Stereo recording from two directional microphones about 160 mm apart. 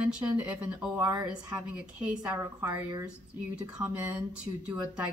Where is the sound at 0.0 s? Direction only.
10° right (ahead or behind).